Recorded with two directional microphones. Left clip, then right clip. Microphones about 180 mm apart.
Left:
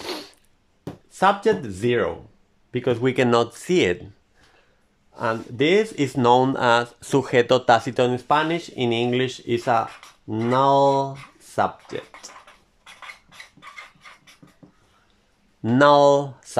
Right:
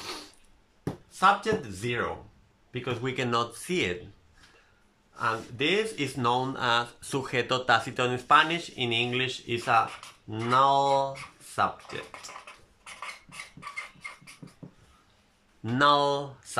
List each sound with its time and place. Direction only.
0.0 s a sound: 45° left (ahead or behind)
1.1 s speech: 40° left (ahead or behind)
5.1 s speech: 35° left (ahead or behind)
13.0 s cutlery: 5° right (ahead or behind)
15.6 s speech: 40° left (ahead or behind)